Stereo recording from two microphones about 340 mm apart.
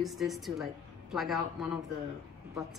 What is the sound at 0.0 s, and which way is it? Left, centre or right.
A woman's voice, centre.